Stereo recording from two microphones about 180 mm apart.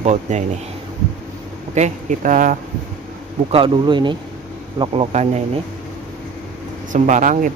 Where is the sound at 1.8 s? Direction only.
45° right (ahead or behind).